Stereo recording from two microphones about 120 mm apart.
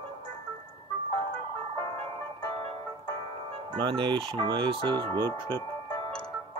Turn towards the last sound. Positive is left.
turn(degrees=-45)  # may be behind; listen again after turning